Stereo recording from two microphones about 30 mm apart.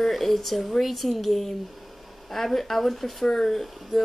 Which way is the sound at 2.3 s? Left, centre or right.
Centre.